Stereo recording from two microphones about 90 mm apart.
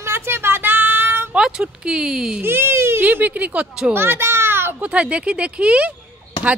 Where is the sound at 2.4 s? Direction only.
25° right (ahead or behind).